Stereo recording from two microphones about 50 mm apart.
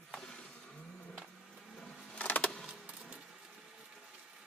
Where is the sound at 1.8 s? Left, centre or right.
Left.